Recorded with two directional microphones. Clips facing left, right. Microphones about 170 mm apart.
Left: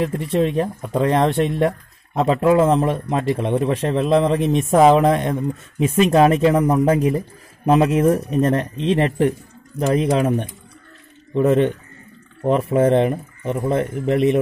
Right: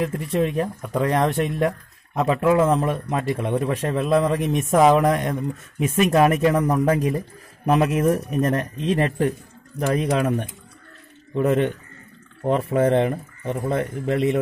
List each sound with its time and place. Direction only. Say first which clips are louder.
0.0 s speech: left 3 dB; 30° left (ahead or behind)